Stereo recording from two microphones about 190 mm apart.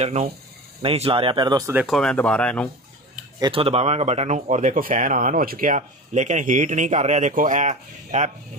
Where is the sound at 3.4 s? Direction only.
30° right (ahead or behind).